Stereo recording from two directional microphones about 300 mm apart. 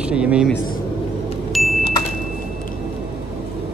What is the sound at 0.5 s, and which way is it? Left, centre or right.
Speech, left.